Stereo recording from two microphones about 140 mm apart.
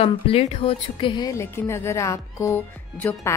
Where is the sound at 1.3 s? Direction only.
20° left (ahead or behind).